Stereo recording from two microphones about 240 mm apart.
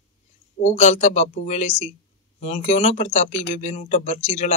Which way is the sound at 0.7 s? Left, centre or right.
Left.